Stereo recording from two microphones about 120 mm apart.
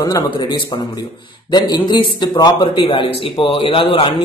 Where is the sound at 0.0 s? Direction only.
35° left (ahead or behind).